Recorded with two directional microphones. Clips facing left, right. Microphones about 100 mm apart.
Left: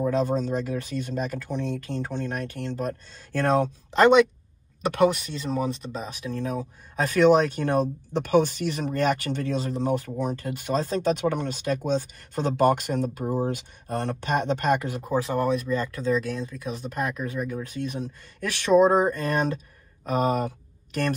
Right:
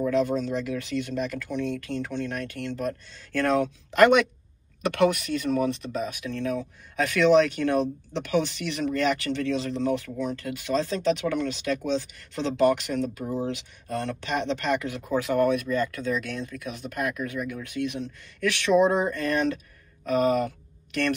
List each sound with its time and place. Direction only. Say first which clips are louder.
0.0 s speech: even; 35° left (ahead or behind)
1.5 s speech: right 1 dB; 15° left (ahead or behind)
3.9 s speech: left 1 dB; 25° left (ahead or behind)
7.0 s speech: left 1 dB; 40° left (ahead or behind)